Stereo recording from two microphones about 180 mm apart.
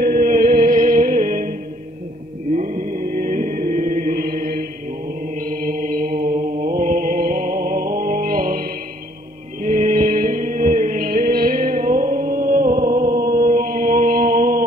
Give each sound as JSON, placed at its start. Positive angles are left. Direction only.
{"t": 0.0, "sound": "music", "side_deg": -50}
{"t": 2.5, "sound": "chant", "side_deg": -45}
{"t": 5.3, "sound": "mantra", "side_deg": -50}
{"t": 9.6, "sound": "music", "side_deg": -45}